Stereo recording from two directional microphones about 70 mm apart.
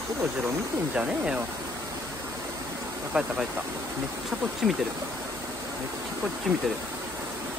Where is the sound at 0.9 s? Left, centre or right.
Centre.